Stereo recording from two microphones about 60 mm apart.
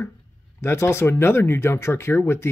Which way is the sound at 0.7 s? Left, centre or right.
Left.